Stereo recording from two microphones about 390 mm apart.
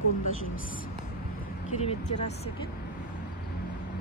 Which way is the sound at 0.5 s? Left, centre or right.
Left.